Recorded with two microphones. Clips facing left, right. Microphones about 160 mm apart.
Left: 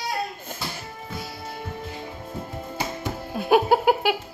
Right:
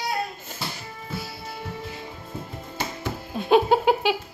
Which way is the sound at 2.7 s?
10° left (ahead or behind).